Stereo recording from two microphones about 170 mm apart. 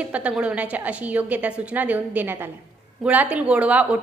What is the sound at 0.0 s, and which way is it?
A woman's voice, 5° right (ahead or behind).